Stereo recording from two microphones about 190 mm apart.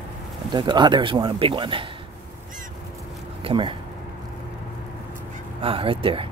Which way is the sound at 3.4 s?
25° right (ahead or behind).